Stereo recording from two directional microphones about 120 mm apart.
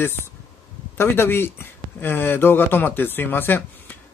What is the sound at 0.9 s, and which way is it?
Speech, 20° left (ahead or behind).